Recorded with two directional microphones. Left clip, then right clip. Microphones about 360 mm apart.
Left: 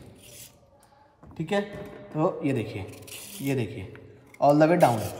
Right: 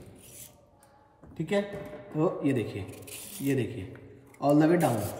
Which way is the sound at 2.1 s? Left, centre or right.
Centre.